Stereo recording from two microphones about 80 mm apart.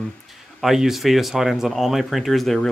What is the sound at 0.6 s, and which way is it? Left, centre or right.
Speech, centre.